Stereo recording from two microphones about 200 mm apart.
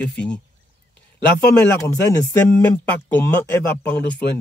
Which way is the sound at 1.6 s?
15° left (ahead or behind).